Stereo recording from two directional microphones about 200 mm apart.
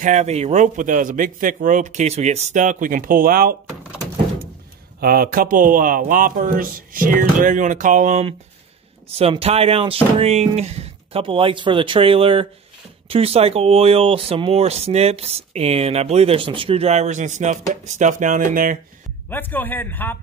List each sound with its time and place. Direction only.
0.0 s speech: 35° right (ahead or behind)
5.0 s a man's voice: 45° right (ahead or behind)
19.2 s a man's voice: 10° left (ahead or behind)